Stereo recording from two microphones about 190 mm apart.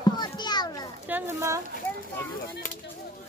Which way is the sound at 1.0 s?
10° right (ahead or behind).